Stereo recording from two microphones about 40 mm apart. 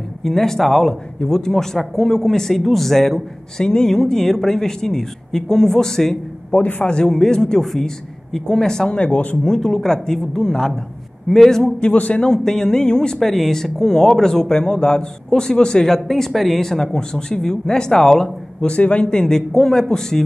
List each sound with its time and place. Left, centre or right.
0.2 s a man's voice: centre
6.5 s speech: left
6.9 s a man's voice: left
8.9 s speech: left
9.4 s a man's voice: centre
11.9 s speech: left
12.2 s a man's voice: centre
18.7 s speech: left
19.0 s a man's voice: centre